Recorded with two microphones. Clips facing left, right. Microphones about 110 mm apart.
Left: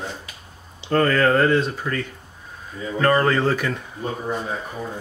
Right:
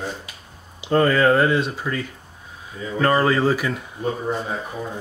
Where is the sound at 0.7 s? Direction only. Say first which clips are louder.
Right 1 dB; 10° right (ahead or behind).